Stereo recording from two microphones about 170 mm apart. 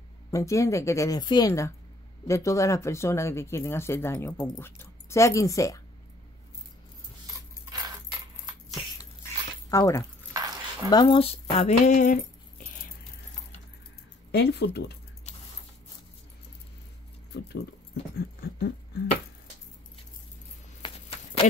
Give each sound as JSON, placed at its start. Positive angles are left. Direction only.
{"t": 0.3, "sound": "speech", "side_deg": 20}
{"t": 7.3, "sound": "dog", "side_deg": -20}
{"t": 9.7, "sound": "speech", "side_deg": 20}
{"t": 10.3, "sound": "dog", "side_deg": -20}
{"t": 10.9, "sound": "speech", "side_deg": 25}
{"t": 11.9, "sound": "keys jangling", "side_deg": 50}
{"t": 14.3, "sound": "speech", "side_deg": 75}
{"t": 17.3, "sound": "dog", "side_deg": 75}
{"t": 20.8, "sound": "a sound", "side_deg": 35}